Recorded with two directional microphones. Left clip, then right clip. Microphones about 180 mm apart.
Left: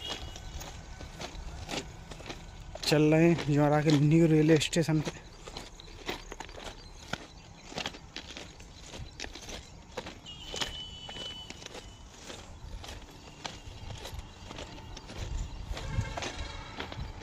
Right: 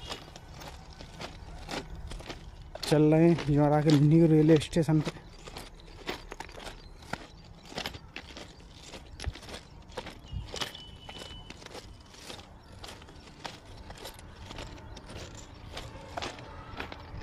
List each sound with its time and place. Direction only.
1.2 s a sound: 10° right (ahead or behind)
2.8 s speech: 20° right (ahead or behind)
6.5 s clip-clop: 5° right (ahead or behind)
7.7 s vehicle: 10° right (ahead or behind)
9.5 s vehicle: 15° right (ahead or behind)
11.1 s walk: 10° right (ahead or behind)
14.0 s vehicle: 15° right (ahead or behind)